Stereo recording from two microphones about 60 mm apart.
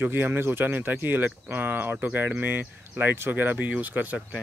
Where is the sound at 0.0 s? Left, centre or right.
Right.